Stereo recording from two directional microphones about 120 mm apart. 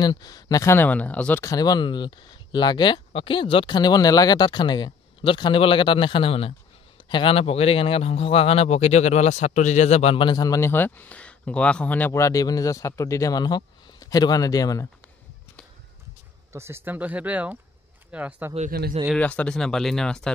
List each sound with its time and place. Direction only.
0.0 s speech: 35° left (ahead or behind); by 1.4 s 15° left (ahead or behind)
1.4 s speech: 30° left (ahead or behind); by 10.3 s 55° left (ahead or behind)
10.3 s speech: 30° left (ahead or behind)
10.7 s speech: 15° left (ahead or behind)
12.1 s speech: 25° left (ahead or behind)
16.5 s speech: 20° right (ahead or behind)
19.1 s speech: 10° left (ahead or behind)